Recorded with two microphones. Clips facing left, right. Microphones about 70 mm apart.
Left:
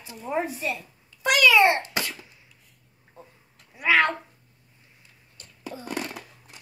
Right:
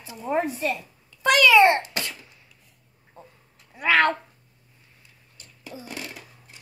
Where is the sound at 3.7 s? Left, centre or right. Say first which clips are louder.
Right 1 dB; right.